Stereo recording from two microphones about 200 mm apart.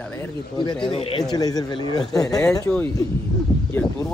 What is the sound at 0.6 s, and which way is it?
Speech, 25° left (ahead or behind).